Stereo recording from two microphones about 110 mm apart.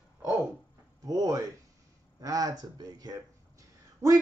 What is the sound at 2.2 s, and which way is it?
Speech, 30° right (ahead or behind).